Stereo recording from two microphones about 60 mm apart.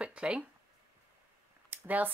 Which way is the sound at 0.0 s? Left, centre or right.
Centre.